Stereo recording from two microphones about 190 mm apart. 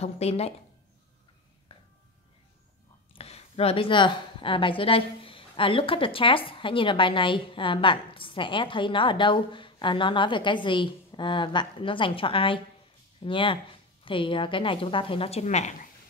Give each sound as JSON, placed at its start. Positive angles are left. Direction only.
{"t": 0.0, "sound": "speech", "side_deg": 35}
{"t": 3.1, "sound": "a woman's voice", "side_deg": 30}